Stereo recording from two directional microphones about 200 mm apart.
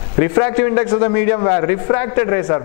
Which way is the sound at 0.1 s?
15° left (ahead or behind).